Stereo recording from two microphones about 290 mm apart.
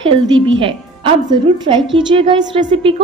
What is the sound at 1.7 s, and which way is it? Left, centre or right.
Speech, centre.